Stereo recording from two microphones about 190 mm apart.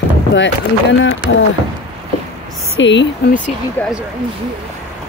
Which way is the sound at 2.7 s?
75° left (ahead or behind).